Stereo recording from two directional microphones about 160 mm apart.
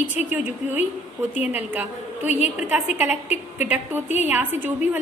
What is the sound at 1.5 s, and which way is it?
A woman's voice, 10° right (ahead or behind).